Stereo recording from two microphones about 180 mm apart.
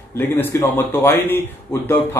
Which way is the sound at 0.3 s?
10° left (ahead or behind).